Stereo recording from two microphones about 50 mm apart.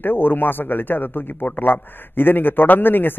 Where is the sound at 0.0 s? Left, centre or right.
Left.